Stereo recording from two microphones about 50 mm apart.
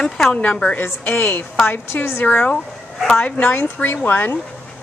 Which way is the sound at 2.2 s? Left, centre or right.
Left.